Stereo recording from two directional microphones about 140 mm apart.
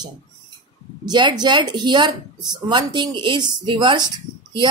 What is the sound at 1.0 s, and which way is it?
Speech, 30° right (ahead or behind).